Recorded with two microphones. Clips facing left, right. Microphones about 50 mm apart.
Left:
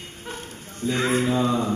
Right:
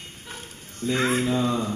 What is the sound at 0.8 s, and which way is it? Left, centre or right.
Speech, centre.